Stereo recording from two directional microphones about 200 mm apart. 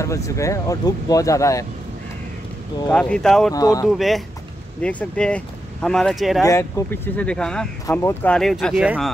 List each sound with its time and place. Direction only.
0.0 s speech: 15° left (ahead or behind)
2.9 s speech: 5° left (ahead or behind)
3.5 s speech: 15° left (ahead or behind)
3.8 s speech: centre (ahead or behind)
6.4 s speech: 15° left (ahead or behind)